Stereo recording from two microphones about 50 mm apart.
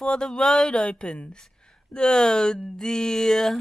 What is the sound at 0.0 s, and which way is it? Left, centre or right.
Speech, centre.